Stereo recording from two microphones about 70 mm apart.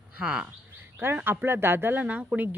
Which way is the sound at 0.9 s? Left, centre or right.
Right.